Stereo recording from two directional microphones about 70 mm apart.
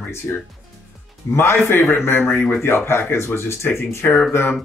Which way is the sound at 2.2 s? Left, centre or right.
Left.